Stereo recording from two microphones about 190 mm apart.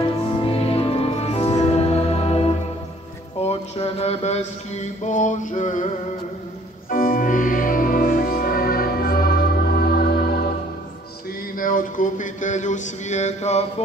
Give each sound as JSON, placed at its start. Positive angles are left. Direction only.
{"t": 0.0, "sound": "music", "side_deg": 30}
{"t": 3.3, "sound": "mantra", "side_deg": 35}
{"t": 6.9, "sound": "music", "side_deg": 45}
{"t": 11.5, "sound": "a sound", "side_deg": 45}